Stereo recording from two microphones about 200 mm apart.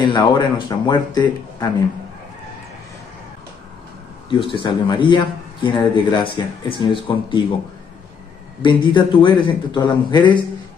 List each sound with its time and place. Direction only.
0.0 s speech: 20° left (ahead or behind)
4.3 s speech: 25° left (ahead or behind)
8.6 s speech: 25° left (ahead or behind)